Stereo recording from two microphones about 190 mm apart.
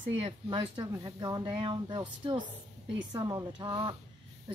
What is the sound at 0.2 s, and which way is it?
Speech, 25° right (ahead or behind).